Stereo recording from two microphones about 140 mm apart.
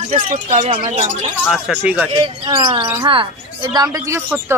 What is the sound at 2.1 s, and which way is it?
Speech, 35° right (ahead or behind).